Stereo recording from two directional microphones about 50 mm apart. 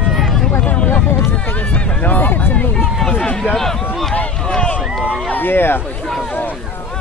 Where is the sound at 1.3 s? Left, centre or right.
Left.